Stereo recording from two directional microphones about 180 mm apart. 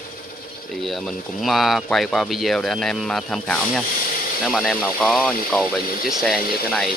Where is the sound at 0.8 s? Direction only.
Centre (ahead or behind).